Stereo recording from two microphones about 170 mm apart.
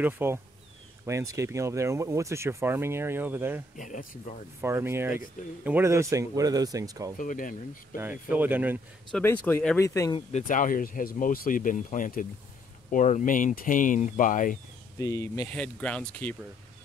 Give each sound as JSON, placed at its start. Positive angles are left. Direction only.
{"t": 0.0, "sound": "speech", "side_deg": -15}
{"t": 3.7, "sound": "speech", "side_deg": 50}
{"t": 4.6, "sound": "speech", "side_deg": -15}
{"t": 7.2, "sound": "speech", "side_deg": 50}
{"t": 8.0, "sound": "speech", "side_deg": -10}
{"t": 9.1, "sound": "speech", "side_deg": 10}
{"t": 10.4, "sound": "speech", "side_deg": 50}
{"t": 15.0, "sound": "speech", "side_deg": 20}
{"t": 15.5, "sound": "speech", "side_deg": 5}